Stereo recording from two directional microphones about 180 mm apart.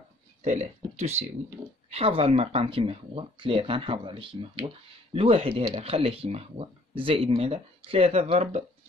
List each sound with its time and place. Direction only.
0.4 s speech: 40° right (ahead or behind)